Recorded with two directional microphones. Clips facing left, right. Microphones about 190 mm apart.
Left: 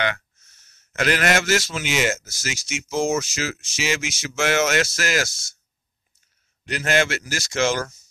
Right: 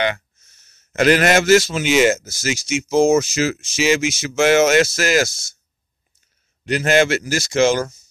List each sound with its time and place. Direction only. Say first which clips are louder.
0.9 s speech: right 7 dB; 25° right (ahead or behind)
6.6 s speech: right 6 dB; 25° right (ahead or behind)